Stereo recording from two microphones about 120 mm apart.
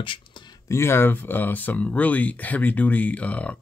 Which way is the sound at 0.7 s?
20° left (ahead or behind).